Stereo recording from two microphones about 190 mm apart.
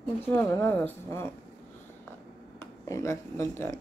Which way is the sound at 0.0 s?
5° left (ahead or behind).